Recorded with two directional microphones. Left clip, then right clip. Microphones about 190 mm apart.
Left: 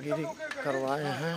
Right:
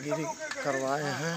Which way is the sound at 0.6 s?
25° left (ahead or behind).